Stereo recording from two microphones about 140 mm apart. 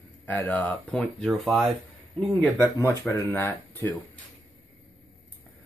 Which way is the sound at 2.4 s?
15° left (ahead or behind).